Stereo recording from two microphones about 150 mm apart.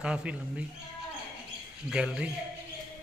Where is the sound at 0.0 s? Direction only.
5° right (ahead or behind).